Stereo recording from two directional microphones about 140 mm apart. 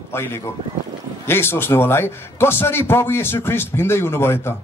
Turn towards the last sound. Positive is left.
turn(degrees=15)  # may be behind; listen again after turning